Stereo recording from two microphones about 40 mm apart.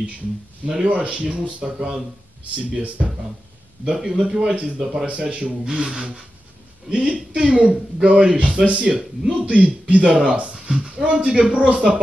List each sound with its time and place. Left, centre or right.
0.8 s speech: right
1.8 s a man's voice: centre
2.7 s speech: right
3.8 s a man's voice: centre
5.1 s speech: right
5.5 s a man's voice: centre
9.5 s speech: right